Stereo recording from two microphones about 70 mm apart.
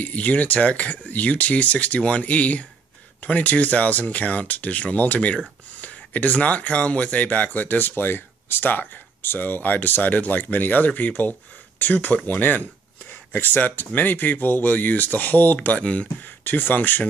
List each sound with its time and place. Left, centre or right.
0.0 s speech: left